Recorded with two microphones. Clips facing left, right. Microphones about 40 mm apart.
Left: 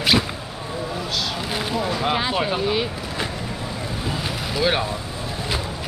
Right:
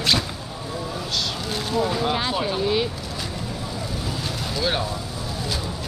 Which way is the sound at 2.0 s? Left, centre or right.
Centre.